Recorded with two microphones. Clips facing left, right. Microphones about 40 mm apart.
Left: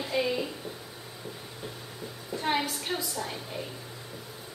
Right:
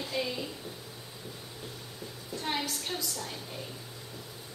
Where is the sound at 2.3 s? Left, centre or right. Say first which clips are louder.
Left 5 dB; centre.